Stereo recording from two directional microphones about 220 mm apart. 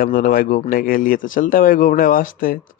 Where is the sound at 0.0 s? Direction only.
40° left (ahead or behind).